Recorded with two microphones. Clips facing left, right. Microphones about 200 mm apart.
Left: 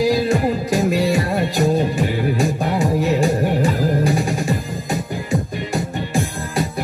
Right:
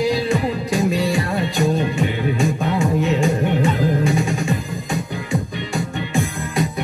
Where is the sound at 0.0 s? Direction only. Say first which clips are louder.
Left 2 dB; centre (ahead or behind).